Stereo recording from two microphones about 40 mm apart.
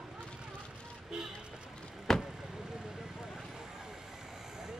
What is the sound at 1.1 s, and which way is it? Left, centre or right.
Music, centre.